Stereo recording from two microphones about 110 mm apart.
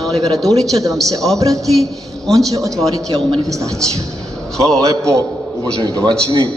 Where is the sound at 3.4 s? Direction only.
30° right (ahead or behind).